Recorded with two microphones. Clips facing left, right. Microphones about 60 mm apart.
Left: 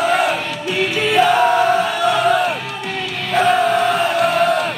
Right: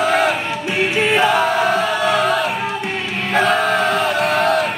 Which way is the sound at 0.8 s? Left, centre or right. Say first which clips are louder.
Left 1 dB; right.